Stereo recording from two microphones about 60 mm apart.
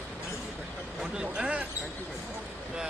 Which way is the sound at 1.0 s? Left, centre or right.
Centre.